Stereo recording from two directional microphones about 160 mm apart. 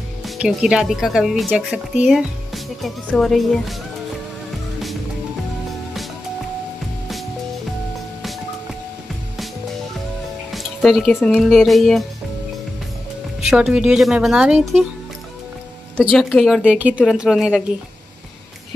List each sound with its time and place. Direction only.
0.2 s speech: 5° right (ahead or behind)
10.5 s music: centre (ahead or behind)
11.3 s speech: centre (ahead or behind)
13.5 s speech: 5° right (ahead or behind)
16.1 s speech: 5° left (ahead or behind)
16.6 s speech: 10° right (ahead or behind)